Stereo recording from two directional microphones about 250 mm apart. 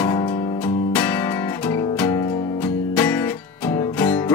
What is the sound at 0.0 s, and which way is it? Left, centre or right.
Music, centre.